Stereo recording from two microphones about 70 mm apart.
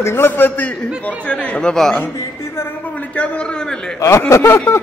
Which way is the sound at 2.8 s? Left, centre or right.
Centre.